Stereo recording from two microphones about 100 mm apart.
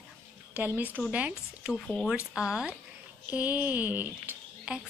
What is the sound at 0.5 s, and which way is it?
Speech, 15° right (ahead or behind).